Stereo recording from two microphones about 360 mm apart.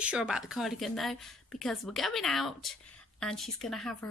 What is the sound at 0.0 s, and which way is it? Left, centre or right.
A woman's voice, centre.